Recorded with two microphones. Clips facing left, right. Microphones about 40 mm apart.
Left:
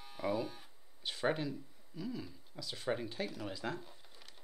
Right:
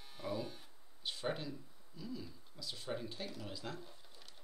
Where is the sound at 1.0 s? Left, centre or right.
Centre.